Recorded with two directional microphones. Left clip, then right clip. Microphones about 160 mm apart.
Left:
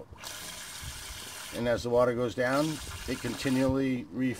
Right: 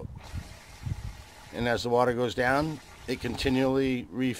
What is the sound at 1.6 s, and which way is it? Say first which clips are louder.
Speech: right 1 dB; 15° right (ahead or behind).